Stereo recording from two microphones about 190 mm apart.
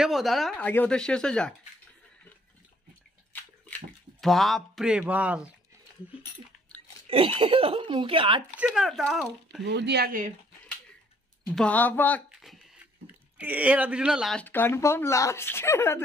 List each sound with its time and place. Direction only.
0.0 s speech: centre (ahead or behind)
3.3 s bathtub: 10° left (ahead or behind)
4.2 s speech: centre (ahead or behind)
7.1 s speech: 30° right (ahead or behind)
8.5 s speech: centre (ahead or behind)
9.7 s speech: 60° right (ahead or behind)
11.4 s speech: 5° left (ahead or behind)
12.3 s a sound: centre (ahead or behind)
13.0 s speech: 10° right (ahead or behind); by 16.0 s 15° left (ahead or behind)